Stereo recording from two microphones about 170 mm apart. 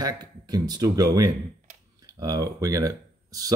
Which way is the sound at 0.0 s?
25° right (ahead or behind).